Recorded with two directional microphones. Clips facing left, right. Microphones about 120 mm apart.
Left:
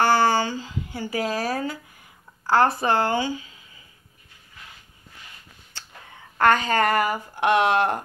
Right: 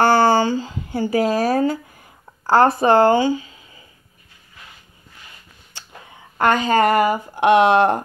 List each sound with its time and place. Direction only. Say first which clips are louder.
0.0 s speech: right 5 dB; 30° right (ahead or behind)
6.3 s speech: right 3 dB; 15° right (ahead or behind)